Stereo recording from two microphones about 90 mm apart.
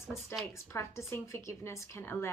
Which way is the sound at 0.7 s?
30° left (ahead or behind).